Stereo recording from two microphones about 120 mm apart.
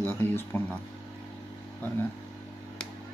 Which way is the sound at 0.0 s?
20° left (ahead or behind).